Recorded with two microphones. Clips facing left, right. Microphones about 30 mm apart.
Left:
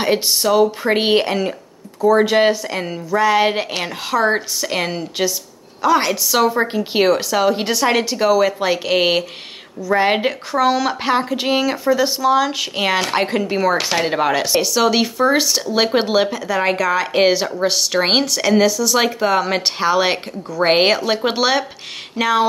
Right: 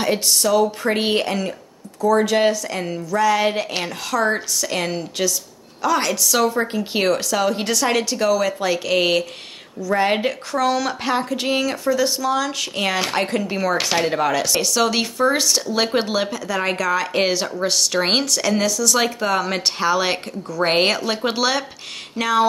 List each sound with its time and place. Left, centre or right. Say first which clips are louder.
0.0 s a woman's voice: left 2 dB; left
14.6 s speech: left 3 dB; centre